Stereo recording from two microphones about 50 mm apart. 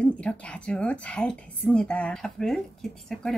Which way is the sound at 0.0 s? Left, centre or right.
Left.